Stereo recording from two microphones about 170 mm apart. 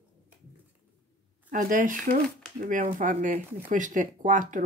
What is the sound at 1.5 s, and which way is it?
Speech, 50° right (ahead or behind).